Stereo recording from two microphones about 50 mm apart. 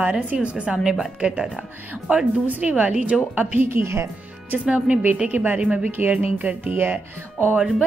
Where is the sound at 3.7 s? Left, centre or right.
Right.